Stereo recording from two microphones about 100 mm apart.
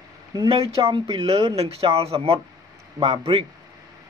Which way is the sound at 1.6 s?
75° right (ahead or behind).